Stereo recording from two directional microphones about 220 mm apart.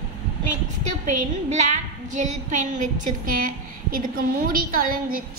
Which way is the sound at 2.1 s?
35° right (ahead or behind).